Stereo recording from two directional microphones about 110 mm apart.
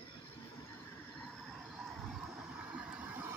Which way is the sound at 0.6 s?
25° left (ahead or behind).